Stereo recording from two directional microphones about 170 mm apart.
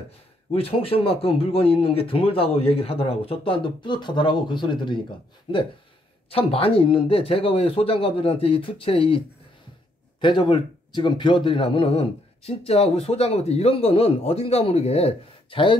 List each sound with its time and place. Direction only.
0.5 s a man's voice: 35° left (ahead or behind)
6.3 s a man's voice: 35° left (ahead or behind)
10.2 s a man's voice: 25° left (ahead or behind)